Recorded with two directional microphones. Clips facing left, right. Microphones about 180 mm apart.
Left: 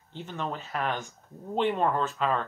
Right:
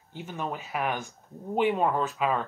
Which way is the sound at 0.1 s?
10° right (ahead or behind).